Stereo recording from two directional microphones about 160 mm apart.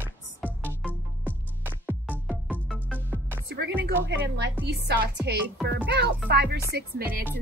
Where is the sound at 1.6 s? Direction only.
10° right (ahead or behind).